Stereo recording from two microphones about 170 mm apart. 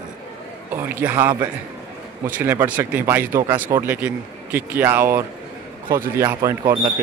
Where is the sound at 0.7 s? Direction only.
10° right (ahead or behind).